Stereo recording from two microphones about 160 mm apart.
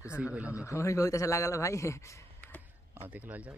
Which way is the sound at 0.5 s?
20° left (ahead or behind).